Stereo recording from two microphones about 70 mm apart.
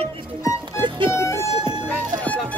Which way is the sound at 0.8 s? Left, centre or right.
Left.